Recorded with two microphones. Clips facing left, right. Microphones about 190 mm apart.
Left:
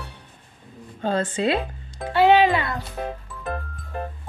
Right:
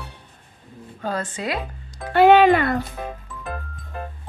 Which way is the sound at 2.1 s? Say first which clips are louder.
Right 3 dB; 55° right (ahead or behind).